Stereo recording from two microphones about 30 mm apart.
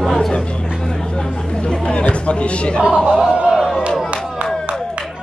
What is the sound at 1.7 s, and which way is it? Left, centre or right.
Speech, left.